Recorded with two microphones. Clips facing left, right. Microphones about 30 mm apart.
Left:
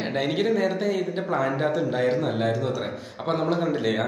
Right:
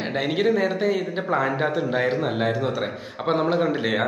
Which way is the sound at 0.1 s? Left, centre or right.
Centre.